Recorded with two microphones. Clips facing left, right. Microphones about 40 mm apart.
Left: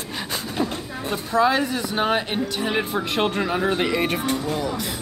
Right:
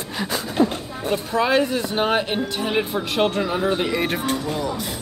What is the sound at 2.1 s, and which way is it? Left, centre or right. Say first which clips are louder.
Speech: right 1 dB; centre.